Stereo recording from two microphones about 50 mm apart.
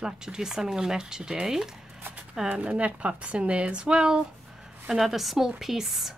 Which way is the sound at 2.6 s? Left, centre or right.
Right.